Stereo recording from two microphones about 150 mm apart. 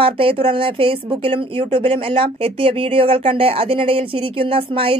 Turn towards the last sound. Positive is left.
turn(degrees=-35)  # may be behind; listen again after turning